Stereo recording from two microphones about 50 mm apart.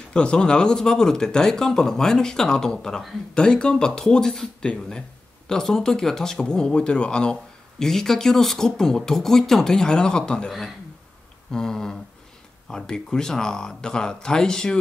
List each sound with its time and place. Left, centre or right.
0.1 s speech: centre
11.5 s speech: centre